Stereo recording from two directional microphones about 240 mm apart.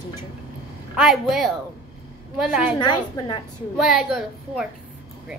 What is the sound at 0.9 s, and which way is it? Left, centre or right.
A woman's voice, centre.